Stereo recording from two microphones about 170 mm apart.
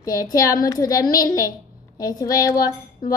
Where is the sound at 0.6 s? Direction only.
20° left (ahead or behind).